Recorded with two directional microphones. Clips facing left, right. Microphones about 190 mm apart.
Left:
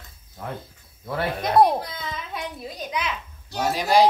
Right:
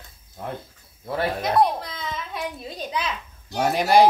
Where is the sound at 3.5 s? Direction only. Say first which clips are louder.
Right 2 dB; 60° right (ahead or behind).